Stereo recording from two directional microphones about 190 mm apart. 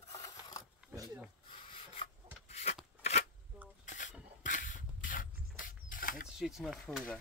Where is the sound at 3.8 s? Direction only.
40° left (ahead or behind).